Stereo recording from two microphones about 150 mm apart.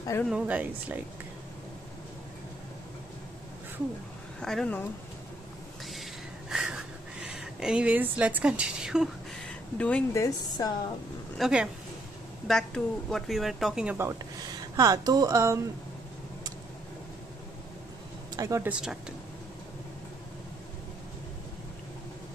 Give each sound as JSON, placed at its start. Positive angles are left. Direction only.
{"t": 0.2, "sound": "speech", "side_deg": -5}
{"t": 4.4, "sound": "speech", "side_deg": 5}
{"t": 6.5, "sound": "a sound", "side_deg": -5}
{"t": 9.8, "sound": "speech", "side_deg": 10}
{"t": 10.1, "sound": "a woman's voice", "side_deg": 20}
{"t": 11.3, "sound": "speech", "side_deg": -5}
{"t": 13.9, "sound": "speech", "side_deg": -20}
{"t": 18.3, "sound": "speech", "side_deg": -20}
{"t": 18.7, "sound": "speech", "side_deg": -5}